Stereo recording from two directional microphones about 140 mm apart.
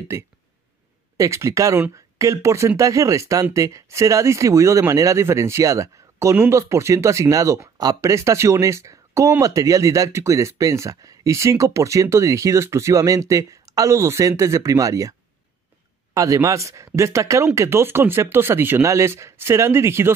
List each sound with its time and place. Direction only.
1.1 s speech: 20° right (ahead or behind)